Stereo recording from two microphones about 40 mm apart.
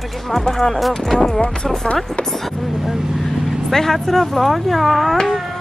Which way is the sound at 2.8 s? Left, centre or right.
Centre.